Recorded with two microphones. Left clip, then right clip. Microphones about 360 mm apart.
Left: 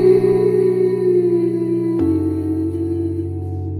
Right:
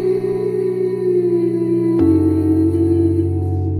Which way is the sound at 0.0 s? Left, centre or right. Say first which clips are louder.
Left 5 dB; left.